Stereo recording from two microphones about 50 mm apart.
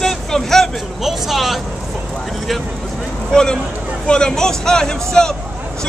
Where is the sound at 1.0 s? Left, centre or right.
Centre.